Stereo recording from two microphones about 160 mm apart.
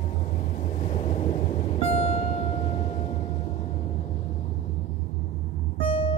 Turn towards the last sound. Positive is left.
turn(degrees=35)  # may be behind; listen again after turning